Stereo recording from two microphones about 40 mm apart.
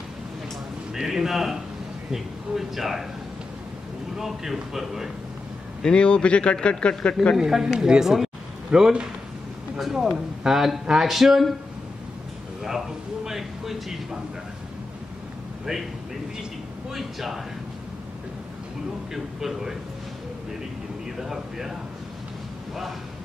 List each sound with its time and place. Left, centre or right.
0.9 s a man's voice: centre
4.2 s a man's voice: centre
5.9 s a man's voice: left
7.3 s a man's voice: centre
12.6 s a man's voice: centre
16.9 s speech: centre
19.1 s a man's voice: centre
21.2 s a man's voice: centre